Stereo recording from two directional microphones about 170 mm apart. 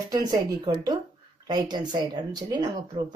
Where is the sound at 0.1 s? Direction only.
25° right (ahead or behind).